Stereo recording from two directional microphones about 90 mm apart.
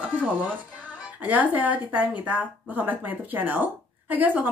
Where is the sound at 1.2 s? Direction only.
15° right (ahead or behind).